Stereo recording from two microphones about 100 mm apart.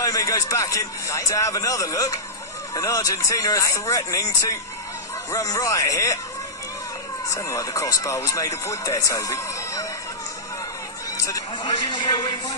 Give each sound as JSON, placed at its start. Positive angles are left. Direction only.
{"t": 0.0, "sound": "speech", "side_deg": 35}
{"t": 7.2, "sound": "speech", "side_deg": 35}
{"t": 11.2, "sound": "a man's voice", "side_deg": 40}